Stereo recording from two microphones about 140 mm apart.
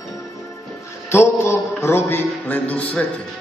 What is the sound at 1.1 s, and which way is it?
Music, 20° left (ahead or behind).